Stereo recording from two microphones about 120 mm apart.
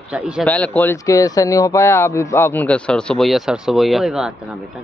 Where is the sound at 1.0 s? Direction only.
30° left (ahead or behind); by 4.3 s centre (ahead or behind).